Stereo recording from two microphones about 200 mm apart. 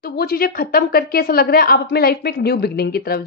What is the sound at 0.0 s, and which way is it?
A woman's voice, 50° left (ahead or behind).